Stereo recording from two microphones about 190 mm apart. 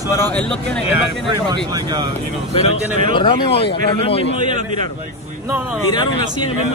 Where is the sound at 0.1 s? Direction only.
5° left (ahead or behind).